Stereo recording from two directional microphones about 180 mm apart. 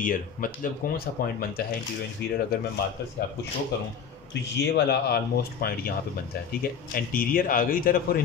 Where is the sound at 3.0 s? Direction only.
70° left (ahead or behind).